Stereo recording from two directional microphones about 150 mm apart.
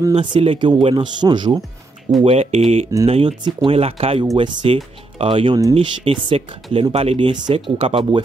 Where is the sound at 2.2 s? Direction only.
40° right (ahead or behind).